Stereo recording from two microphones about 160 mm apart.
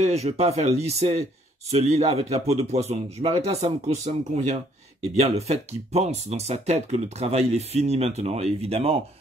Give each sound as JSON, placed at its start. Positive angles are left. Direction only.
{"t": 0.0, "sound": "speech", "side_deg": -40}